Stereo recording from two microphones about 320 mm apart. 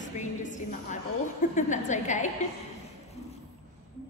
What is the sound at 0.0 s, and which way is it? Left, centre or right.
A woman's voice, left.